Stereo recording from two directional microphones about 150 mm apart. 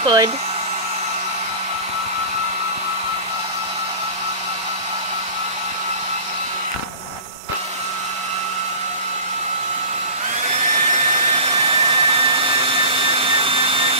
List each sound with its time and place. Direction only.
0.0 s hair dryer: 25° right (ahead or behind)
10.5 s hair dryer: 55° right (ahead or behind); by 13.9 s 35° right (ahead or behind)